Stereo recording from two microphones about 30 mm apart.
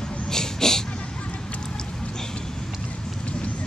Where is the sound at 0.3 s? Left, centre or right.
Centre.